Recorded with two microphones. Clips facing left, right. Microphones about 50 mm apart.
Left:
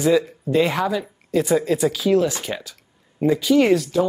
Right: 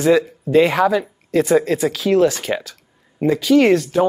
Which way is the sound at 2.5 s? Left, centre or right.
Right.